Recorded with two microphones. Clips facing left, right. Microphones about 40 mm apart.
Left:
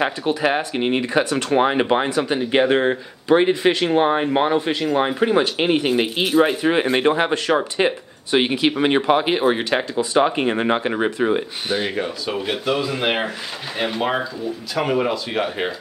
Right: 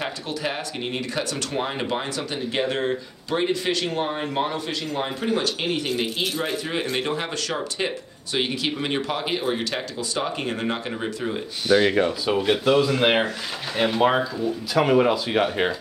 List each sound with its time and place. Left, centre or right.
0.6 s speech: left
2.0 s speech: left
4.9 s speech: left
11.9 s speech: centre